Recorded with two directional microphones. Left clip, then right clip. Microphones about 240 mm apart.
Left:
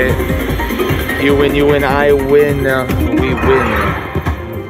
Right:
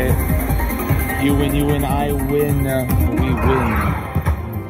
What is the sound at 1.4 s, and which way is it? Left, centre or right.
Speech, centre.